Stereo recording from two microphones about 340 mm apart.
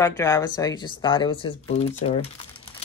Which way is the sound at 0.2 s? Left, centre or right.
Centre.